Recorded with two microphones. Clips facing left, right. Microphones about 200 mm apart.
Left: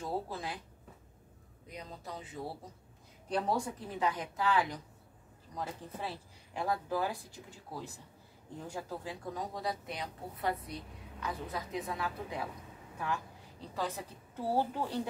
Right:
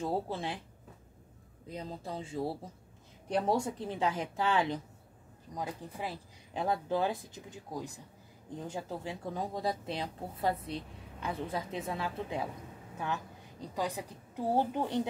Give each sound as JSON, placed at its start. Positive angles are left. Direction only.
{"t": 0.0, "sound": "speech", "side_deg": -25}
{"t": 1.7, "sound": "speech", "side_deg": -30}
{"t": 5.5, "sound": "a woman's voice", "side_deg": -15}